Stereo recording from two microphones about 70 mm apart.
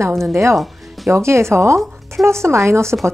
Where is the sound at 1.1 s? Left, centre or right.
Right.